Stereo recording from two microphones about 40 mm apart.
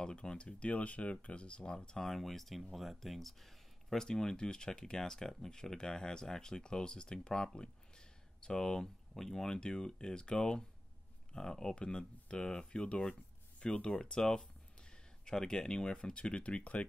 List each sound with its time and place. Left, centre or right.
0.0 s speech: left
2.0 s speech: centre
4.0 s speech: centre; by 16.8 s left